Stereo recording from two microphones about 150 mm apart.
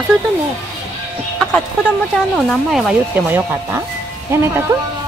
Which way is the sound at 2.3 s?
Centre (ahead or behind).